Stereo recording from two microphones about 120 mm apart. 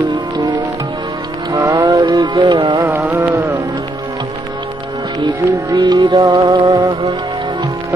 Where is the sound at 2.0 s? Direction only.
40° right (ahead or behind).